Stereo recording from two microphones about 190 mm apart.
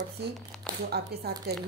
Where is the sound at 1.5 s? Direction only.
60° right (ahead or behind).